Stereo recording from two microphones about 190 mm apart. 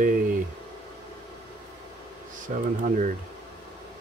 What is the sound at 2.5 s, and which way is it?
Speech, 45° right (ahead or behind).